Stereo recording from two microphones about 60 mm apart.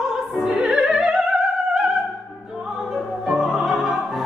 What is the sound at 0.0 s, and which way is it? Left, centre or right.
Music, centre.